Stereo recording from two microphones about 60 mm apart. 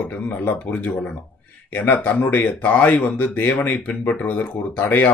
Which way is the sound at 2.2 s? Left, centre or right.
Left.